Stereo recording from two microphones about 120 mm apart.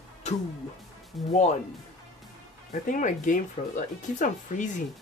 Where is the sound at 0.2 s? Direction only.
70° left (ahead or behind).